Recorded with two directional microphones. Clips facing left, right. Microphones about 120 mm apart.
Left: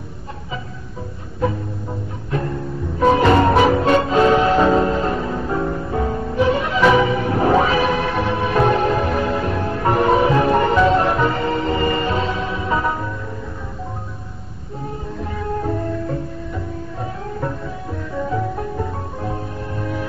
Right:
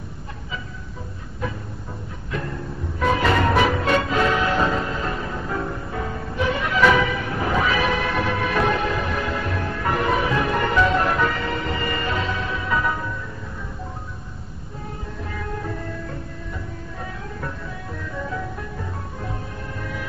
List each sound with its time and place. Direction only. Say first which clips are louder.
3.0 s music: left 6 dB; 30° left (ahead or behind)
19.8 s music: left 7 dB; 35° left (ahead or behind)